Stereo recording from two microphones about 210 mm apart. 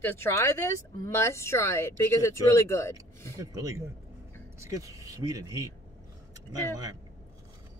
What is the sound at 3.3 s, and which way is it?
Speech, 15° right (ahead or behind).